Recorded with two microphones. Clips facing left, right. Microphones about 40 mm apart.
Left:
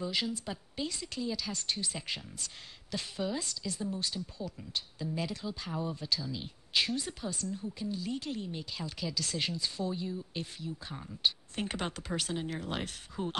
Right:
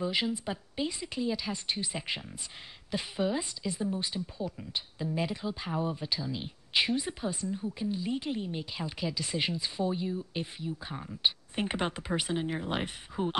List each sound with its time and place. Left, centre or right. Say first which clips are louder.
0.0 s a woman's voice: right 4 dB; right